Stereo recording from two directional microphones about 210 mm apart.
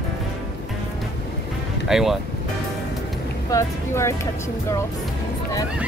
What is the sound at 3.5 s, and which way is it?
Speech, 15° left (ahead or behind).